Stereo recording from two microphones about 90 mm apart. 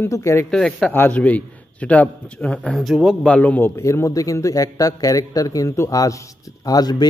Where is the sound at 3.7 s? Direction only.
35° left (ahead or behind).